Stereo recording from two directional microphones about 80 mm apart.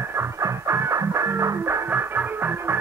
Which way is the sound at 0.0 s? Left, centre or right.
Right.